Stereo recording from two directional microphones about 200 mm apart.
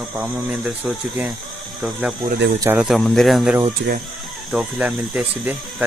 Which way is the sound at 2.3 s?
50° right (ahead or behind).